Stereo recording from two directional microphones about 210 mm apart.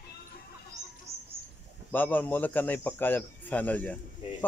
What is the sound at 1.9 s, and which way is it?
A man's voice, 10° left (ahead or behind).